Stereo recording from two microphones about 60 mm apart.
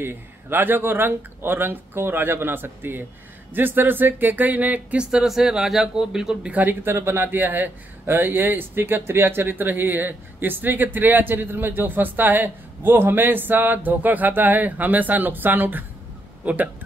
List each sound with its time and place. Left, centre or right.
0.0 s a man's voice: right
5.1 s a man's voice: centre
6.4 s a man's voice: right